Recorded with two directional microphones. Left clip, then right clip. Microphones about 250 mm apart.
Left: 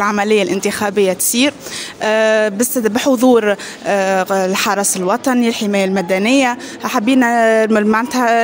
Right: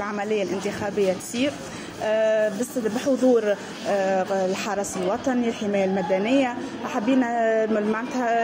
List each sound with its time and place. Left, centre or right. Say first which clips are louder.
0.0 s speech: left 12 dB; left